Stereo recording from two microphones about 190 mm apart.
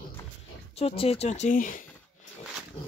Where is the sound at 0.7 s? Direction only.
30° left (ahead or behind).